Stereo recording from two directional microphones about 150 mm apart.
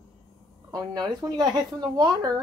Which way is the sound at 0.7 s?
25° right (ahead or behind).